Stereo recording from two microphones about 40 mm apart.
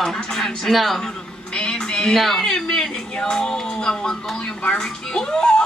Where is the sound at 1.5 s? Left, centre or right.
Centre.